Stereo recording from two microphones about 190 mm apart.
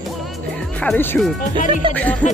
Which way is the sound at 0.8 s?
10° left (ahead or behind).